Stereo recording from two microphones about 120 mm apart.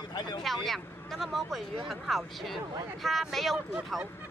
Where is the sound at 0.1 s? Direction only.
35° left (ahead or behind).